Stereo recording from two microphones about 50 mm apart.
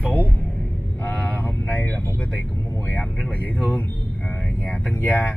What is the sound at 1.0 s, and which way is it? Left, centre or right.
Speech, left.